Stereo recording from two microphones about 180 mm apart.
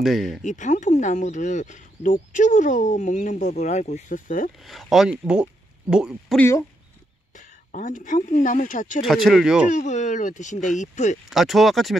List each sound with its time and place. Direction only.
0.0 s speech: centre (ahead or behind)
0.4 s speech: 45° left (ahead or behind)
4.6 s speech: centre (ahead or behind)
6.3 s speech: 10° left (ahead or behind)
7.3 s speech: 45° left (ahead or behind)
9.0 s speech: centre (ahead or behind)
9.7 s speech: 40° left (ahead or behind)
11.2 s speech: centre (ahead or behind)